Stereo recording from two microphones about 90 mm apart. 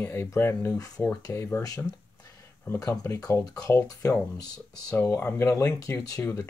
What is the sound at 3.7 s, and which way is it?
Speech, 25° left (ahead or behind).